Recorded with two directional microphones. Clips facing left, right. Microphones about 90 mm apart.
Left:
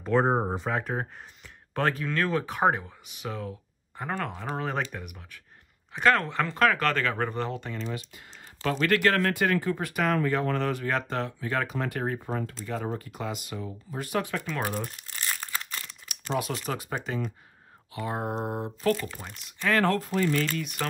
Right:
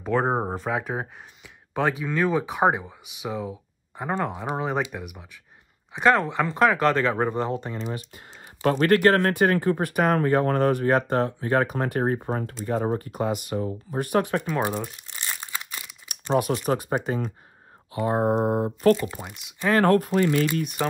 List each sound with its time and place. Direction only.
0.0 s speech: 5° right (ahead or behind); by 7.8 s 25° right (ahead or behind)
8.6 s speech: 40° right (ahead or behind)
14.4 s speech: 20° right (ahead or behind)
15.2 s crumpling: 10° right (ahead or behind)
16.1 s a sound: 45° right (ahead or behind)
16.6 s speech: 45° right (ahead or behind)
18.9 s speech: 10° right (ahead or behind)
20.0 s speech: 60° right (ahead or behind)